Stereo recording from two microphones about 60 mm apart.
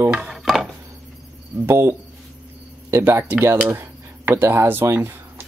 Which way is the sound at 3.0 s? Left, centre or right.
Right.